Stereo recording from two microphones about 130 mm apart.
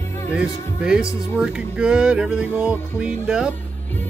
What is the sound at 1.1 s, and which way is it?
Speech, 25° left (ahead or behind).